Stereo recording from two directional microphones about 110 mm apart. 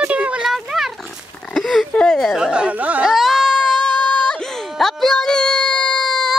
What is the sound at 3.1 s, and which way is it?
Baby cry, centre (ahead or behind).